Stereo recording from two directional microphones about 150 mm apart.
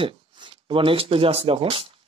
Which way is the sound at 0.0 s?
35° right (ahead or behind).